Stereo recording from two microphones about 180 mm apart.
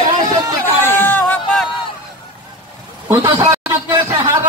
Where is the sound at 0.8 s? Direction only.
10° left (ahead or behind).